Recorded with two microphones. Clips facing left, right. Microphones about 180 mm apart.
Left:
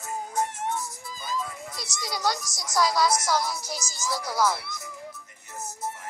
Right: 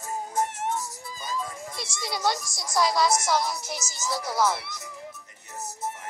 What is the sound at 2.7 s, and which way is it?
Speech, 20° right (ahead or behind).